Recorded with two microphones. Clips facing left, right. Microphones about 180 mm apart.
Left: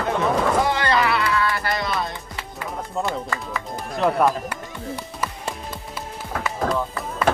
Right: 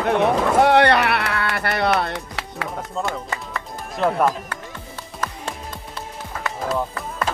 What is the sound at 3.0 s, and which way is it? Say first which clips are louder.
Speech: left 1 dB; 15° left (ahead or behind).